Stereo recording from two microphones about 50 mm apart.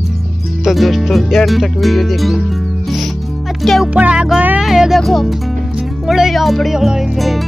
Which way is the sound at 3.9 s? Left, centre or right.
Right.